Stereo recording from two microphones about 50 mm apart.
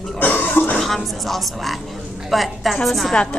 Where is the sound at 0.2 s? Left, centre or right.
Left.